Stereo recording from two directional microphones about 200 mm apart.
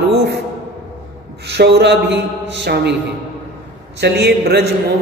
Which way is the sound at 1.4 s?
55° right (ahead or behind).